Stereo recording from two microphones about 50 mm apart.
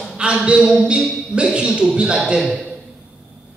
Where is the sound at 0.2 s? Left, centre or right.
Right.